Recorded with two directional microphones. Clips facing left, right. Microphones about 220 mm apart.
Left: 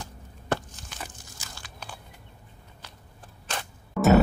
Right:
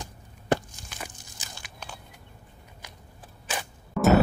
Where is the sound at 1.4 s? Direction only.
15° right (ahead or behind).